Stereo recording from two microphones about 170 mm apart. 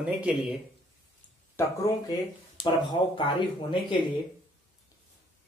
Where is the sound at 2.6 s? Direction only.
30° left (ahead or behind).